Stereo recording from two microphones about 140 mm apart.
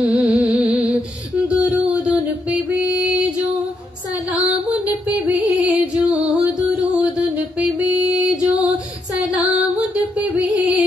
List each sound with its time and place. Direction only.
0.0 s music: 10° right (ahead or behind)
4.3 s music: 10° right (ahead or behind)